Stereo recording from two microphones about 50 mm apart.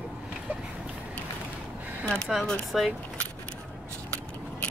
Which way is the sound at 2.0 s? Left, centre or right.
Centre.